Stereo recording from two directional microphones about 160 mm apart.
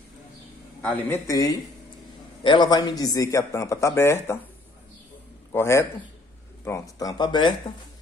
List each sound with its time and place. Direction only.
0.8 s speech: 15° left (ahead or behind)
5.5 s a man's voice: 15° left (ahead or behind)